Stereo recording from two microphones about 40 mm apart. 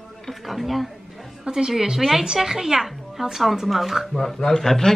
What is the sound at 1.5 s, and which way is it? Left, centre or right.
Speech, right.